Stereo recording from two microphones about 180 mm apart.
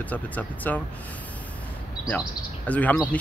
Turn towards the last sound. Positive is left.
turn(degrees=10)  # may be behind; listen again after turning